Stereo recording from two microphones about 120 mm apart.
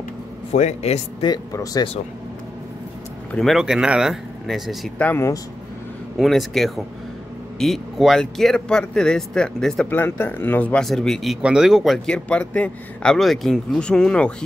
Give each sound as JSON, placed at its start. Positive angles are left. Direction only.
{"t": 0.5, "sound": "a man's voice", "side_deg": 65}
{"t": 1.2, "sound": "speech", "side_deg": 30}
{"t": 3.3, "sound": "speech", "side_deg": 5}
{"t": 4.9, "sound": "speech", "side_deg": 10}
{"t": 6.1, "sound": "speech", "side_deg": 0}
{"t": 9.8, "sound": "speech", "side_deg": 20}